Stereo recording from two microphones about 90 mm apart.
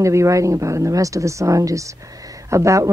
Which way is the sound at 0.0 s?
35° right (ahead or behind).